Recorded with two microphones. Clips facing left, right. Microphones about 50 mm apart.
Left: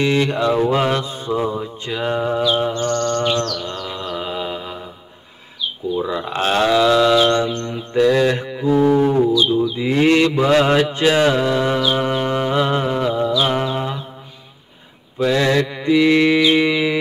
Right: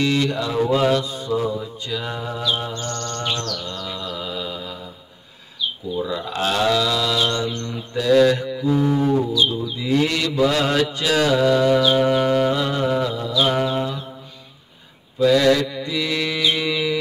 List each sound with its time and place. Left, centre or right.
0.0 s mantra: left
5.9 s mantra: left
7.4 s mantra: left
11.8 s music: centre
12.5 s music: left
13.3 s music: left
15.1 s mantra: left